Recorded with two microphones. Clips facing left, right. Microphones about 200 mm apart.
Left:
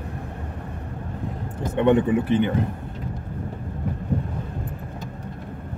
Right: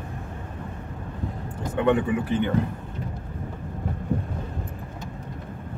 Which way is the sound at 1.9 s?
20° left (ahead or behind).